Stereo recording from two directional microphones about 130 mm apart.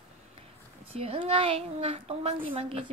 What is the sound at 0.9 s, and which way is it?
Speech, 50° right (ahead or behind).